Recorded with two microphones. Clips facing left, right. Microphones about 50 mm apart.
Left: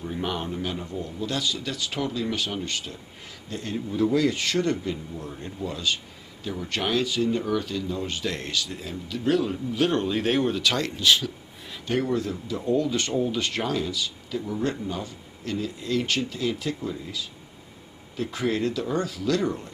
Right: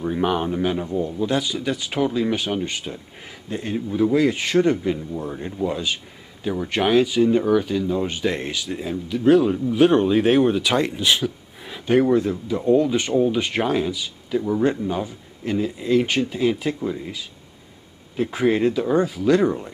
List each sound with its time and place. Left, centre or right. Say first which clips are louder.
0.1 s speech: right 7 dB; centre
5.1 s speech: right 7 dB; right